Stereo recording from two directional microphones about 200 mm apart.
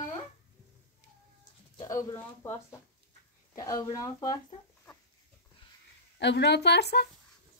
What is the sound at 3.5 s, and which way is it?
Speech, 15° left (ahead or behind).